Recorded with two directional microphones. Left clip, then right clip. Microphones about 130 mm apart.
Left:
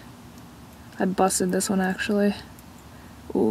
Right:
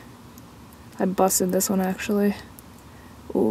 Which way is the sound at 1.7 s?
20° right (ahead or behind).